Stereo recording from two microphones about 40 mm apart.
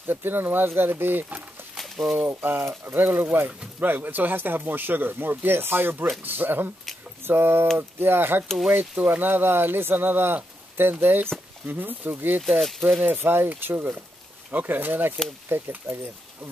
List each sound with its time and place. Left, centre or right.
0.0 s speech: right
1.8 s a sound: centre
2.1 s speech: right
3.3 s speech: right
3.8 s speech: right
11.6 s speech: right
12.5 s speech: centre
13.0 s speech: right
14.5 s speech: right